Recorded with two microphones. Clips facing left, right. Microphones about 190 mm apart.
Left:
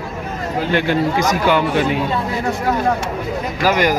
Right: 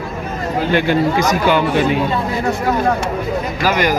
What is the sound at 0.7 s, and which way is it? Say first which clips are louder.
Speech: right 2 dB; 5° right (ahead or behind).